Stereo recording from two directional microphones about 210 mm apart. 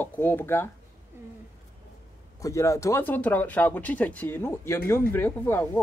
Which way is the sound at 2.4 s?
15° left (ahead or behind).